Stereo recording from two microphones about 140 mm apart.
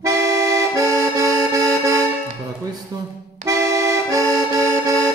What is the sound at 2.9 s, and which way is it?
Speech, 25° right (ahead or behind).